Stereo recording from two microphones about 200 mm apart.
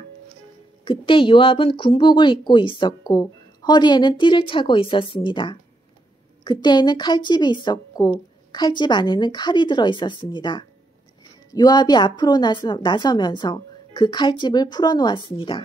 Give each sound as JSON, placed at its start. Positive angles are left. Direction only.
{"t": 0.8, "sound": "a woman's voice", "side_deg": 25}